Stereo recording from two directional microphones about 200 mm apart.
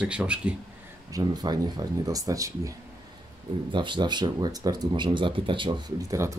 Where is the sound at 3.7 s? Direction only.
25° right (ahead or behind).